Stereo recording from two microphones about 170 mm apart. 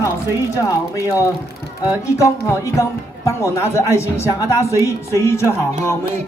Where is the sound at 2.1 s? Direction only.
20° left (ahead or behind).